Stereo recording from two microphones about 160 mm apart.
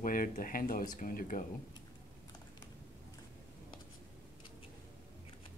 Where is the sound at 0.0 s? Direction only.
60° left (ahead or behind).